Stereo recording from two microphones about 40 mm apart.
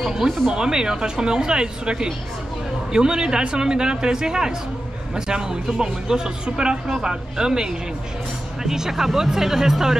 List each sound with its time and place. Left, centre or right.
0.0 s speech: centre